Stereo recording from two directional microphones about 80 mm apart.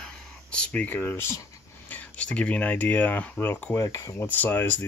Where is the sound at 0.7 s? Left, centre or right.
Left.